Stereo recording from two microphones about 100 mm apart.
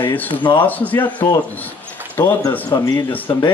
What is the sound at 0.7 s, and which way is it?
Speech, 15° left (ahead or behind).